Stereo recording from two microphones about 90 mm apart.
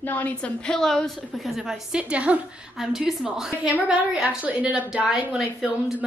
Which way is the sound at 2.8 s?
5° right (ahead or behind).